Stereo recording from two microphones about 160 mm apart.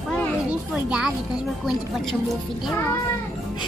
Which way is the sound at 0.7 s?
5° right (ahead or behind).